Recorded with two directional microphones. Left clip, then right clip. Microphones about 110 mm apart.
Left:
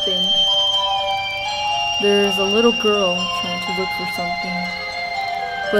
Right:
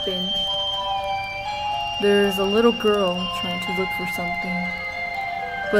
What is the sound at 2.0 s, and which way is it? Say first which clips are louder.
Speech: left 1 dB; 20° left (ahead or behind).